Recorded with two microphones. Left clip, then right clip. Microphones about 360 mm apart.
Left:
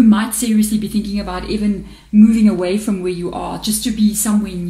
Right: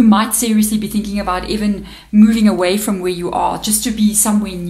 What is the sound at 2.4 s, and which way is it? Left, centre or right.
Speech, right.